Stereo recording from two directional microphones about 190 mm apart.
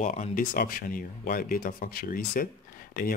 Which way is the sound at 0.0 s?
40° left (ahead or behind).